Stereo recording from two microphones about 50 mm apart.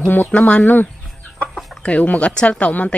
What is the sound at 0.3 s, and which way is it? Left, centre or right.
Speech, left.